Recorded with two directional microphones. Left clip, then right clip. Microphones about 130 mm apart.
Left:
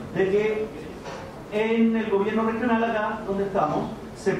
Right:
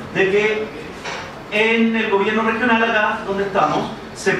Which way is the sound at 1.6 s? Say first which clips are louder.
Right 7 dB; 30° right (ahead or behind).